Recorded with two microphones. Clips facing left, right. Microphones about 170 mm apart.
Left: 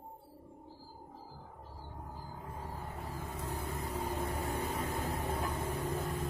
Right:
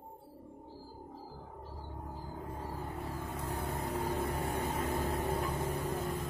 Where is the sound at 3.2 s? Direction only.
60° right (ahead or behind).